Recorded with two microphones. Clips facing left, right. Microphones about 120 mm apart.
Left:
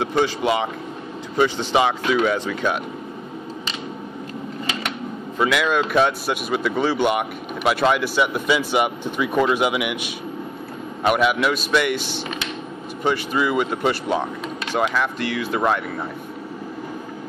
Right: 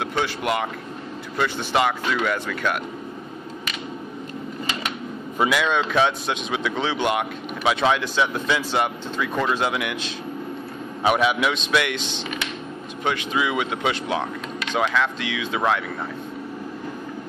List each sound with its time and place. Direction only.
0.1 s speech: 5° left (ahead or behind)
5.5 s speech: 5° left (ahead or behind)
11.1 s speech: centre (ahead or behind)
13.4 s speech: centre (ahead or behind)